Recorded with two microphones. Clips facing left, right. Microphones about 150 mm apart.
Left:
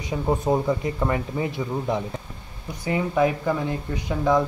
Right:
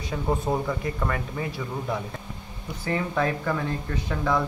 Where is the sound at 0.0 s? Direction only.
15° left (ahead or behind).